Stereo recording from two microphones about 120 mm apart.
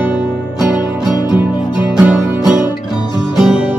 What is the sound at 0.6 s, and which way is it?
Music, 5° right (ahead or behind).